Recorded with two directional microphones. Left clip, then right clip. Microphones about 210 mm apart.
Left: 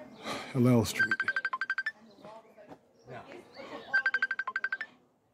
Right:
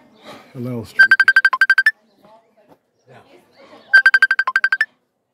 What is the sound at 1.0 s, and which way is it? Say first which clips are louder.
Music: right 19 dB; 50° right (ahead or behind).